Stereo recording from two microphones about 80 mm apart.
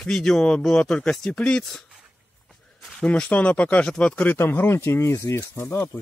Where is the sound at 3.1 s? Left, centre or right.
Centre.